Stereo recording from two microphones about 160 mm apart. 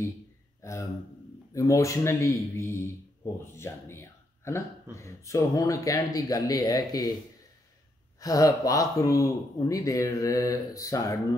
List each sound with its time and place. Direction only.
0.6 s a sound: 20° left (ahead or behind)
1.5 s speech: 20° left (ahead or behind)
8.2 s speech: 20° left (ahead or behind)